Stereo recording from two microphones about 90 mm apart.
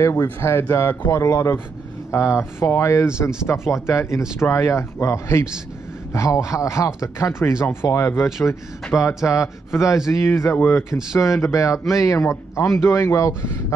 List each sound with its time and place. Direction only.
0.0 s a man's voice: 30° left (ahead or behind)
8.2 s a man's voice: 5° right (ahead or behind)
9.3 s a man's voice: 35° left (ahead or behind)
9.9 s a man's voice: 5° right (ahead or behind)
10.2 s speech: 30° left (ahead or behind)
10.8 s speech: 5° right (ahead or behind)
11.1 s a man's voice: 35° left (ahead or behind)